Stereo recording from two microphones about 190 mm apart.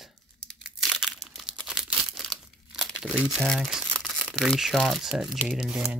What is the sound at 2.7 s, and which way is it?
Speech, centre (ahead or behind).